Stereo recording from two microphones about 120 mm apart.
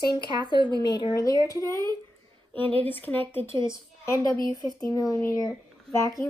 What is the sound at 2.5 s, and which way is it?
A woman's voice, 15° left (ahead or behind).